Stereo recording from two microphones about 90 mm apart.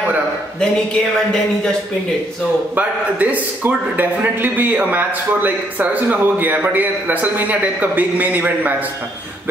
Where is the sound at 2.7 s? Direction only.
15° right (ahead or behind).